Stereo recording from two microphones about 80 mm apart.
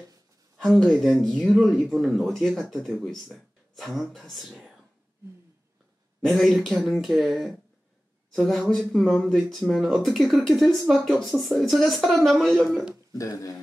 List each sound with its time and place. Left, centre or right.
0.9 s speech: centre
6.2 s speech: centre
8.4 s speech: centre
13.1 s speech: left